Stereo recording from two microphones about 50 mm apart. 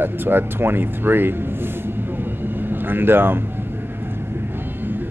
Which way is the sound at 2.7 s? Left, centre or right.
Right.